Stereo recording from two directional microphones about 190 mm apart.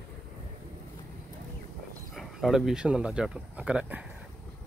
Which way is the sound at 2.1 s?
Centre (ahead or behind).